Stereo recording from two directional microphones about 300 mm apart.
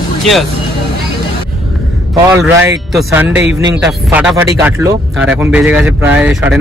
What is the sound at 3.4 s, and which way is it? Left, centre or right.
Speech, right.